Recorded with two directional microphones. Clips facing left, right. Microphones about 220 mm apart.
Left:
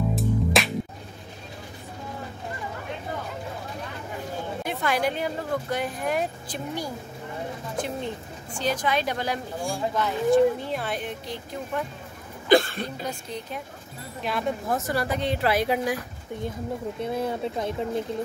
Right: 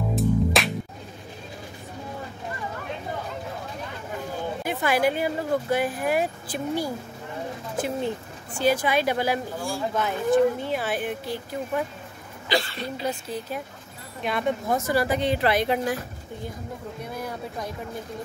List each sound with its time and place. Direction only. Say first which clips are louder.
0.1 s music: right 5 dB; centre (ahead or behind)
4.6 s speech: right 3 dB; 5° right (ahead or behind)
12.4 s speech: left 7 dB; 50° left (ahead or behind)
14.2 s speech: right 2 dB; centre (ahead or behind)
17.0 s speech: left 7 dB; 25° left (ahead or behind)